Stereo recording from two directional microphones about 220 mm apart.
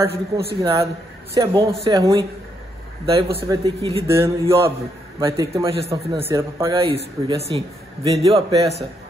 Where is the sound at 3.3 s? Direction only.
20° right (ahead or behind).